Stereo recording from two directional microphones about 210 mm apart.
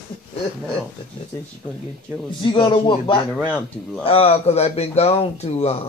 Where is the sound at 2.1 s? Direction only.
10° right (ahead or behind).